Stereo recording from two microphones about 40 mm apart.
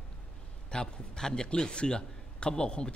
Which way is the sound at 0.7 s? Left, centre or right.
Left.